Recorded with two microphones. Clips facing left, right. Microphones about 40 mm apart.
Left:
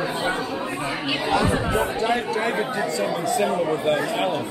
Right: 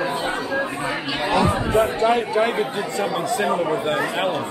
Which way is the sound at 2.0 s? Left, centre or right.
Right.